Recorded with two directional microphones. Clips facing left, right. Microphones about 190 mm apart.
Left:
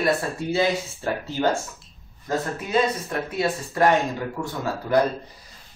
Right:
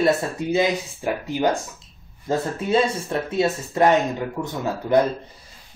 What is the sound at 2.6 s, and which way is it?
Speech, 30° right (ahead or behind).